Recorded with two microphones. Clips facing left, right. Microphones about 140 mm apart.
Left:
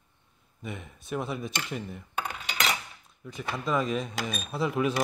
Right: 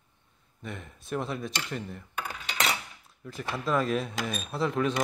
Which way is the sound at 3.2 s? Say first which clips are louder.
Even; centre (ahead or behind).